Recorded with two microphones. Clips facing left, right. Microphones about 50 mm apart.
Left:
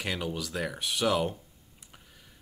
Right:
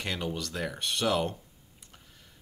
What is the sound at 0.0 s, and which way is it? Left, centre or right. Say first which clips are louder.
Speech: even; centre.